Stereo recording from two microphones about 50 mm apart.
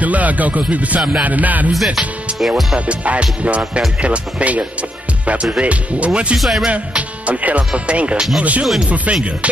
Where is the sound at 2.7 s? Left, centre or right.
Right.